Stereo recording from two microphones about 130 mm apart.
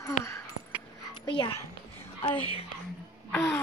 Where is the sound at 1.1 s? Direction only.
35° left (ahead or behind).